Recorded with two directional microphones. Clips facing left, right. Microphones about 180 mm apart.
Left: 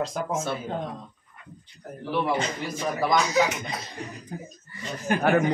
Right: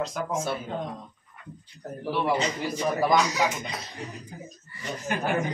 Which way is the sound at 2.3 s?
50° left (ahead or behind).